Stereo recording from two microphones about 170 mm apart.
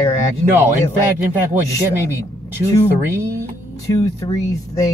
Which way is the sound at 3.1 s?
15° right (ahead or behind).